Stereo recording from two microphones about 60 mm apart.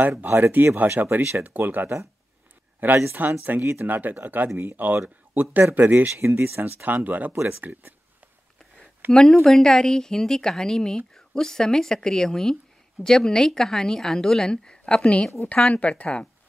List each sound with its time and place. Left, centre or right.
0.2 s speech: right
3.2 s speech: right
6.0 s speech: right
6.6 s speech: right
9.1 s speech: centre